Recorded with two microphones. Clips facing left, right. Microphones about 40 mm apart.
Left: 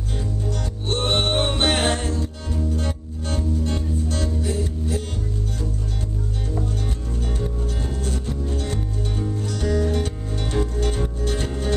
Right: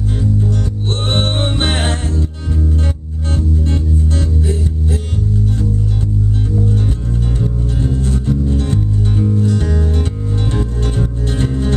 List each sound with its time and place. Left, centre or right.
1.0 s music: centre
7.4 s music: centre
8.3 s music: right